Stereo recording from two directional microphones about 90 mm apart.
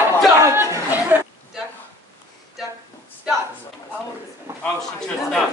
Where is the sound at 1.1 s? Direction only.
20° right (ahead or behind).